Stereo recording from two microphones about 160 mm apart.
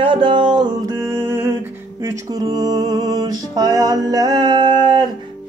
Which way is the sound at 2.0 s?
25° right (ahead or behind).